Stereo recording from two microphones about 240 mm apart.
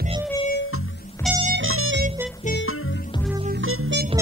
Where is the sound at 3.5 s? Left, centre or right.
Right.